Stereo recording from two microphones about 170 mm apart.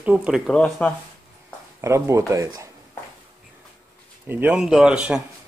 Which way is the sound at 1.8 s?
15° right (ahead or behind).